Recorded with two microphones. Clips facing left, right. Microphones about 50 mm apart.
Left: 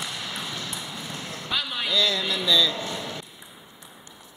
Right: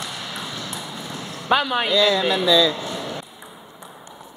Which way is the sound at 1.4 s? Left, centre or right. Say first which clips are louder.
Right 10 dB; right.